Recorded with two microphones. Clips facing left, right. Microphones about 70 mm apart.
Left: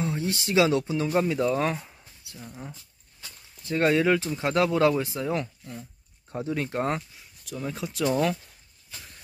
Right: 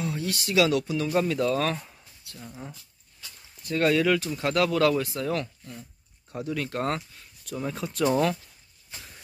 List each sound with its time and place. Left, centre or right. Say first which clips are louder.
0.0 s speech: left 2 dB; left
2.3 s speech: even; centre
3.6 s speech: left 1 dB; left
6.3 s speech: left 2 dB; left
7.5 s speech: right 1 dB; centre